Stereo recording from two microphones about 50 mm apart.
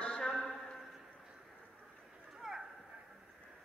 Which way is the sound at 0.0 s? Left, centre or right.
Centre.